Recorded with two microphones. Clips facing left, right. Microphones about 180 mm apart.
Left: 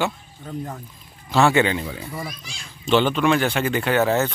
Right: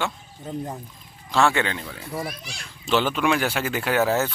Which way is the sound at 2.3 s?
65° right (ahead or behind).